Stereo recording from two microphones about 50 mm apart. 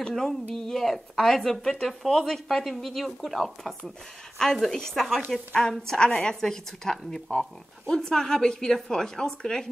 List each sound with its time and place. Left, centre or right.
0.0 s a woman's voice: centre